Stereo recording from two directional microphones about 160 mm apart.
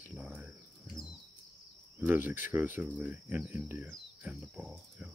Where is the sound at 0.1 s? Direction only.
10° right (ahead or behind).